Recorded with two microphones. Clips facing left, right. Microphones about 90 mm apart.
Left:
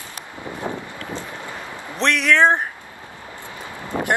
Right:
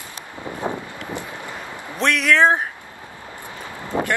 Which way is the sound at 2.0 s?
Centre (ahead or behind).